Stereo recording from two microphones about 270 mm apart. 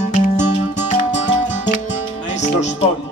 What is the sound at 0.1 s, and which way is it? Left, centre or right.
Music, left.